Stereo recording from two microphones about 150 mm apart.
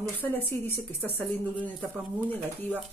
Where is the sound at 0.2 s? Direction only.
15° left (ahead or behind).